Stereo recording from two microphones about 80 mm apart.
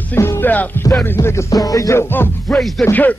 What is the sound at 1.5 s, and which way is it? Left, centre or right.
Music, left.